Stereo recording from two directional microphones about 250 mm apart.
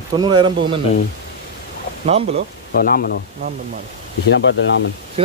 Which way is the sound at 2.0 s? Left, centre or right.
Right.